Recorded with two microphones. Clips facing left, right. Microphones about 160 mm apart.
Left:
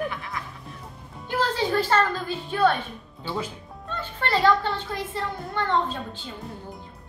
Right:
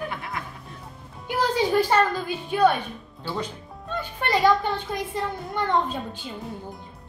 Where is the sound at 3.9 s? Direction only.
15° right (ahead or behind).